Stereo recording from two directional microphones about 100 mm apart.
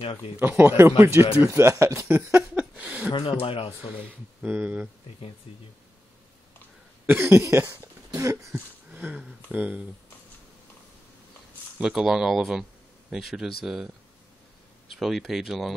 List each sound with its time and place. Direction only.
0.0 s speech: 65° left (ahead or behind)
0.4 s speech: 20° right (ahead or behind)
3.2 s speech: 70° left (ahead or behind)
4.5 s speech: 15° right (ahead or behind)
7.1 s speech: 20° right (ahead or behind)
8.5 s speech: 20° right (ahead or behind)
11.8 s speech: 5° right (ahead or behind)
14.9 s speech: centre (ahead or behind)